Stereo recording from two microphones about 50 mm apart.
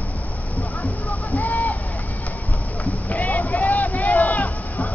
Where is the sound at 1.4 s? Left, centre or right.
Left.